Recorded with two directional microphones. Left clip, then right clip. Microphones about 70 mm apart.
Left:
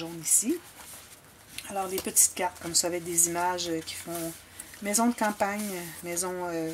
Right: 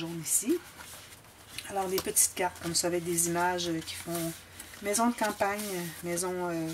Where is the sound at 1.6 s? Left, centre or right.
Centre.